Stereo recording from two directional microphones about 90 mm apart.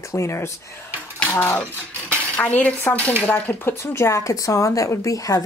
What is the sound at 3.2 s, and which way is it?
Speech, 20° left (ahead or behind).